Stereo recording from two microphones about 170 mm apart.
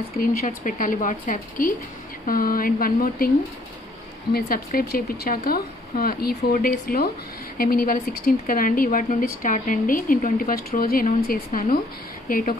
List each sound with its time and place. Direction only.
0.2 s a woman's voice: 55° left (ahead or behind)
4.3 s speech: 65° left (ahead or behind)